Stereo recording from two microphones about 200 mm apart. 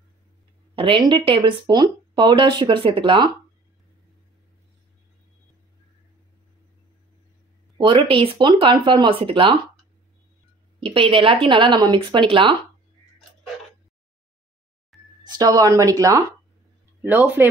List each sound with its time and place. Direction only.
0.7 s speech: 25° right (ahead or behind)
7.7 s speech: 25° right (ahead or behind)
10.8 s speech: 25° right (ahead or behind)
14.9 s a sound: centre (ahead or behind)
15.2 s speech: 20° right (ahead or behind)